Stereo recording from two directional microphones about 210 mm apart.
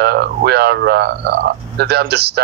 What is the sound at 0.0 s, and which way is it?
Speech, 50° right (ahead or behind).